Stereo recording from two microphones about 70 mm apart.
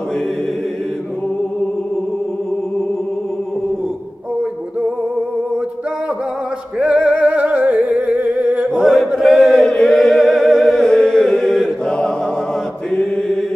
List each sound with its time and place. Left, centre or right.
6.8 s music: centre
8.6 s chant: centre